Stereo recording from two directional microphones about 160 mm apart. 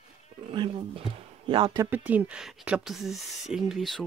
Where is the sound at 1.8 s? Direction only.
10° right (ahead or behind).